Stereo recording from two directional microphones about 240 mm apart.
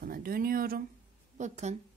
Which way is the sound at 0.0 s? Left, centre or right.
Right.